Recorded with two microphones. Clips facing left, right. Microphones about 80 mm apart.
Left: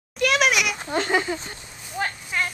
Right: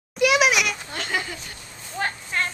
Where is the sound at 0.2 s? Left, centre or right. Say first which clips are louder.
Right 2 dB; centre.